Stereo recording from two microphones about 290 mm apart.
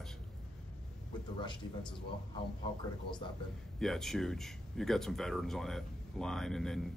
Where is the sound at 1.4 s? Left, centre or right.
Centre.